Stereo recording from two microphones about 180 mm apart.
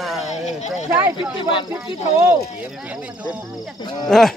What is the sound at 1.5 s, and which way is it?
Speech, 30° left (ahead or behind).